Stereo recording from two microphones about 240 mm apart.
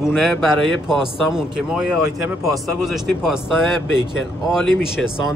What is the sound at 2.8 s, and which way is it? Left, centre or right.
A man's voice, centre.